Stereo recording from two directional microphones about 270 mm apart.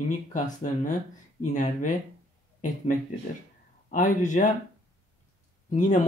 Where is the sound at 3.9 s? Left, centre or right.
Left.